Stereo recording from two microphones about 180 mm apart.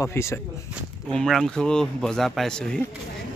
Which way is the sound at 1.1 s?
Centre (ahead or behind).